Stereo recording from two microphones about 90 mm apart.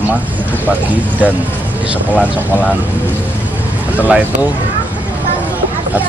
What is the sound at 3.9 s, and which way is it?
Speech, 15° right (ahead or behind).